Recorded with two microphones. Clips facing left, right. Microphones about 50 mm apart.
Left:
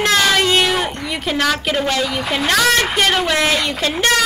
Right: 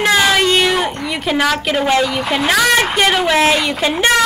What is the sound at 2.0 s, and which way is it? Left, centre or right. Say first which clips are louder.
A woman's voice: right 3 dB; centre.